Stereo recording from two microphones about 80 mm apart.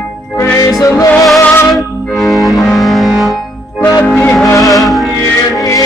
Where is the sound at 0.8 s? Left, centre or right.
Left.